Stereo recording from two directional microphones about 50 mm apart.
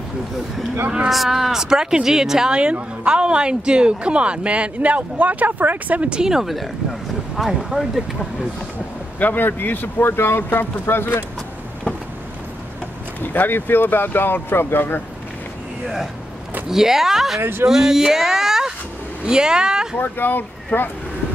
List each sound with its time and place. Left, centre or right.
1.1 s speech: centre; by 6.0 s right
6.0 s speech: centre
9.2 s speech: left
13.2 s speech: left
16.6 s speech: centre
17.4 s speech: right
17.6 s speech: centre
20.0 s speech: left